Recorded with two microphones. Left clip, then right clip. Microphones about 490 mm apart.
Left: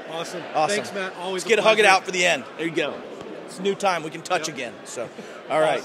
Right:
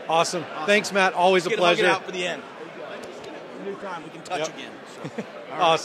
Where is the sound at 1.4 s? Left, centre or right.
Left.